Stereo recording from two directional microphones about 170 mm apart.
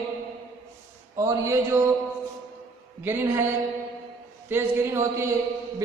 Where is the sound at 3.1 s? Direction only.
15° right (ahead or behind).